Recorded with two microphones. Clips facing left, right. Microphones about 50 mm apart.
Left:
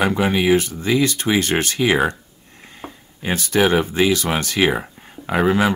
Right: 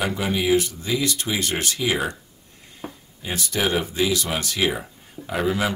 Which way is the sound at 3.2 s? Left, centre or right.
Left.